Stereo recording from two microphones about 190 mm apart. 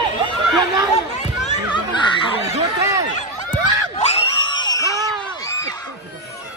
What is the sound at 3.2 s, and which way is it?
Screaming, 35° left (ahead or behind).